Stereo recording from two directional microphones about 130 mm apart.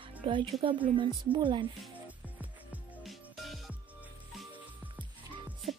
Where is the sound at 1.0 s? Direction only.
40° right (ahead or behind).